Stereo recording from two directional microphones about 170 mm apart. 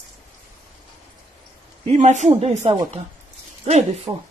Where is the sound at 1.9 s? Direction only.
45° right (ahead or behind).